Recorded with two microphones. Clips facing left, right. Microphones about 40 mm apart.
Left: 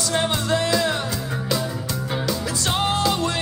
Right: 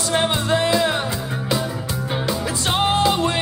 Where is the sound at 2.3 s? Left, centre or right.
Right.